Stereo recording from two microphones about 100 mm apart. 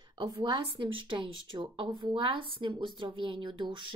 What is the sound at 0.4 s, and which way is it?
Speech, 55° right (ahead or behind).